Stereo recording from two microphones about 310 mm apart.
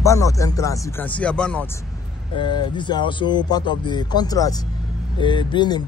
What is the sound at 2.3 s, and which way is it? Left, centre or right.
Speech, centre.